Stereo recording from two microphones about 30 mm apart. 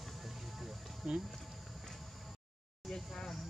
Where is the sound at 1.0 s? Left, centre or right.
Centre.